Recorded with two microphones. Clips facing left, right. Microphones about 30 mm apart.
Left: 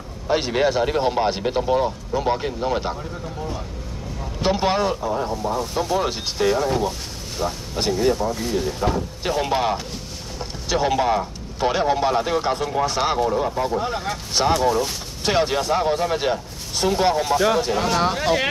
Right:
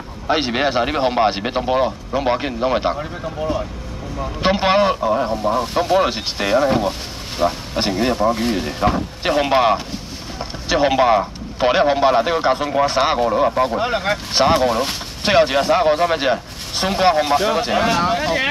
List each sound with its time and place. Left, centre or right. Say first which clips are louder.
0.3 s speech: right 2 dB; right
3.0 s speech: right 6 dB; right
4.4 s speech: right 4 dB; right
5.4 s speech: right 5 dB; right
13.6 s speech: right 5 dB; right
14.1 s speech: right 4 dB; right
14.7 s speech: right 1 dB; right
15.2 s speech: right 5 dB; right
17.9 s speech: right 2 dB; centre